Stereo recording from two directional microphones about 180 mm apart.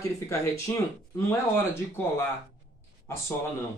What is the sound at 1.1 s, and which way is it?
Speech, 15° left (ahead or behind).